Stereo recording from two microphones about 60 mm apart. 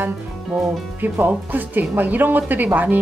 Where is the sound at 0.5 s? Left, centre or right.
Right.